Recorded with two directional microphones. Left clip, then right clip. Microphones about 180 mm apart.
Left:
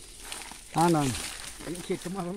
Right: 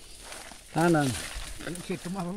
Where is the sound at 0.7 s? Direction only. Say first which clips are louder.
Even; 20° right (ahead or behind).